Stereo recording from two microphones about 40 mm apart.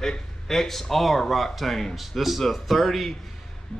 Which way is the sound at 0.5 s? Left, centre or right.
Centre.